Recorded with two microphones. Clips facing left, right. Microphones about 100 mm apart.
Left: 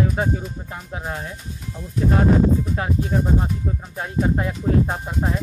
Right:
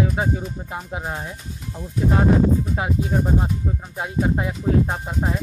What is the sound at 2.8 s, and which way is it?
Speech, 15° right (ahead or behind).